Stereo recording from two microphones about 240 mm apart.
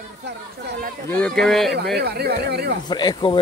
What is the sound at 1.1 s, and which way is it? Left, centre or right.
Speech, centre.